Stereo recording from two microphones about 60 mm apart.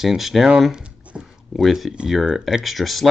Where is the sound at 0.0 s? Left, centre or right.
Centre.